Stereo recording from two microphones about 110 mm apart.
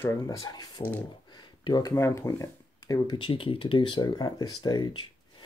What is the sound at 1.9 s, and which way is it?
Speech, 25° left (ahead or behind).